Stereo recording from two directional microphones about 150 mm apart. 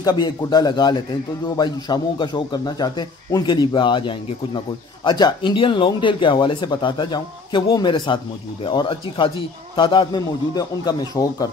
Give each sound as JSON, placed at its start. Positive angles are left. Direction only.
{"t": 0.0, "sound": "a man's voice", "side_deg": 25}